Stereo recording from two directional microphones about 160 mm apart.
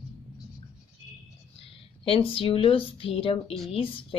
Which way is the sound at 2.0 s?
35° left (ahead or behind).